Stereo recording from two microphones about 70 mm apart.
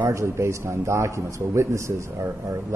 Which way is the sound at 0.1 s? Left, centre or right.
Right.